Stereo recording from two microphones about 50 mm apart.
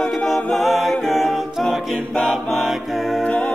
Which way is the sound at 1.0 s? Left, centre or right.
Centre.